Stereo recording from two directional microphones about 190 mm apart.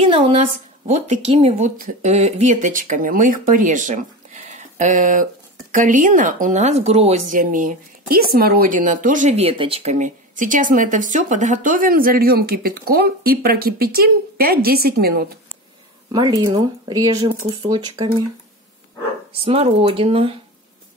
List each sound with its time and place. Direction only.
0.0 s a woman's voice: 30° right (ahead or behind); by 15.3 s 55° right (ahead or behind)
16.1 s speech: 20° right (ahead or behind)
19.3 s a woman's voice: 30° right (ahead or behind)